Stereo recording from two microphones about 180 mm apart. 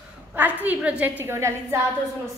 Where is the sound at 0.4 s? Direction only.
10° right (ahead or behind).